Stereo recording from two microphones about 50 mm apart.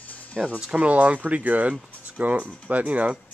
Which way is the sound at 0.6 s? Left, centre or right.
Right.